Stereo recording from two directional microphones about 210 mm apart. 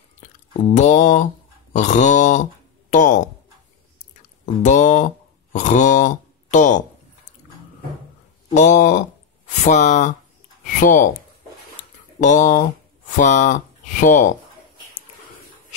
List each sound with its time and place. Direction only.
0.2 s speech: 35° left (ahead or behind)
4.6 s speech: 35° left (ahead or behind)
8.5 s speech: 35° left (ahead or behind)
12.2 s speech: 35° left (ahead or behind)